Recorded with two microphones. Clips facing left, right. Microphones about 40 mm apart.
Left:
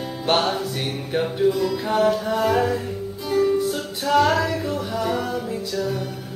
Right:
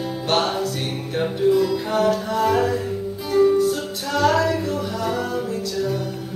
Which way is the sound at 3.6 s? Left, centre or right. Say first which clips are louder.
Right 3 dB; centre.